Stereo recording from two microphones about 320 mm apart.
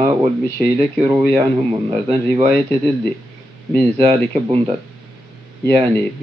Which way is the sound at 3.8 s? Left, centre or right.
Centre.